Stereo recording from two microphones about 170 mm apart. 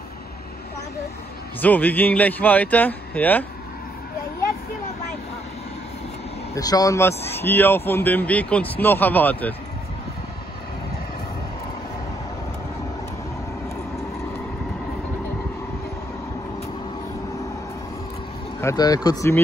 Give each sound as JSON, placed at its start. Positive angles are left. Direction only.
{"t": 1.6, "sound": "a man's voice", "side_deg": 10}
{"t": 6.5, "sound": "a man's voice", "side_deg": 20}
{"t": 18.6, "sound": "a man's voice", "side_deg": 20}